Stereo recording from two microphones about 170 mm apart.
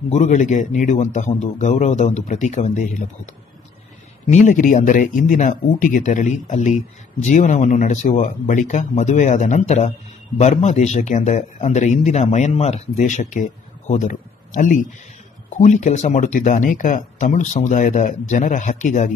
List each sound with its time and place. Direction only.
0.1 s speech: 45° left (ahead or behind)
4.3 s speech: 45° left (ahead or behind)